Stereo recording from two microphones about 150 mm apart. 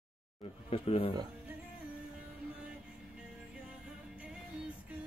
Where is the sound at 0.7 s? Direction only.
40° left (ahead or behind).